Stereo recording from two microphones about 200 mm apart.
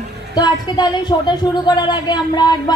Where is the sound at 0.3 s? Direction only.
20° left (ahead or behind).